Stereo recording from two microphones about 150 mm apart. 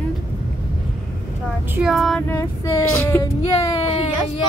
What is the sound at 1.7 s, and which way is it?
Speech, 5° right (ahead or behind).